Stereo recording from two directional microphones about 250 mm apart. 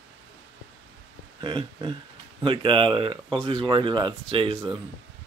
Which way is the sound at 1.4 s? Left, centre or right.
Centre.